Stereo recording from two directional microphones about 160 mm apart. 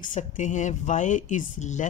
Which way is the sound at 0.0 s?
50° left (ahead or behind).